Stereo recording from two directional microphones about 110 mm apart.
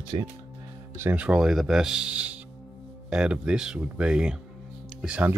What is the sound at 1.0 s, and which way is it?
Speech, 15° right (ahead or behind).